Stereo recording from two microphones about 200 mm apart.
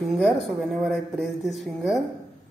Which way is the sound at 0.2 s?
Centre (ahead or behind).